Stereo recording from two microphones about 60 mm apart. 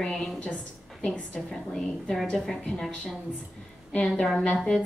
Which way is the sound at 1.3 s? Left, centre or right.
Centre.